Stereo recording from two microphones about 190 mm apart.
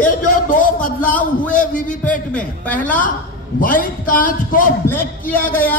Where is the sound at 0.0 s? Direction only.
45° left (ahead or behind).